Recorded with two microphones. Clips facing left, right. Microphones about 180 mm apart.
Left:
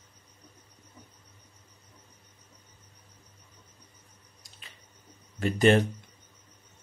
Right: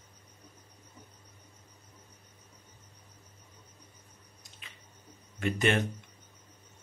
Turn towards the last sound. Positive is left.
turn(degrees=35)  # may be behind; listen again after turning